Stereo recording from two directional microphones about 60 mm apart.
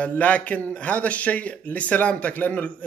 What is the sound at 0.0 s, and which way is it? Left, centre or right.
Speech, left.